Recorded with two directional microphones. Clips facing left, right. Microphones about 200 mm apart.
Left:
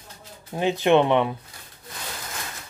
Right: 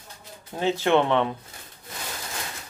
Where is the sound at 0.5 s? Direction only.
15° left (ahead or behind).